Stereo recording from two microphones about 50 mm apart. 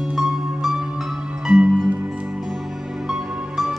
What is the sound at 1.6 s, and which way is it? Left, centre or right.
Music, right.